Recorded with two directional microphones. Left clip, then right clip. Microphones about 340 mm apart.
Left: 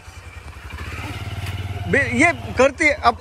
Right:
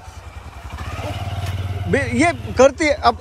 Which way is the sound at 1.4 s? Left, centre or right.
Centre.